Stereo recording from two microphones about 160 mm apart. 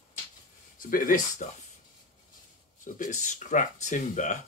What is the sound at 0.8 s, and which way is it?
Speech, 60° left (ahead or behind).